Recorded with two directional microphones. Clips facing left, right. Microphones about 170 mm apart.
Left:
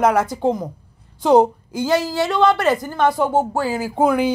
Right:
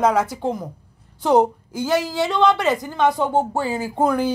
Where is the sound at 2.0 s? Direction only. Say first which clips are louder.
Left 1 dB; 15° right (ahead or behind).